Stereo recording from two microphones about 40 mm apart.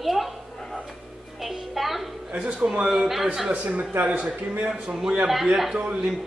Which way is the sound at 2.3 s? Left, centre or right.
Right.